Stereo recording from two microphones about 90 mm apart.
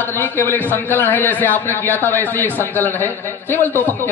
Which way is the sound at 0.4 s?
20° left (ahead or behind).